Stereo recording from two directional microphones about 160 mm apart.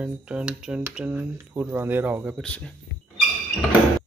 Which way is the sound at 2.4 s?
5° left (ahead or behind).